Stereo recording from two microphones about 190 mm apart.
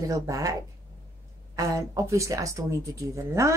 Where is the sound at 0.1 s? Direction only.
20° right (ahead or behind).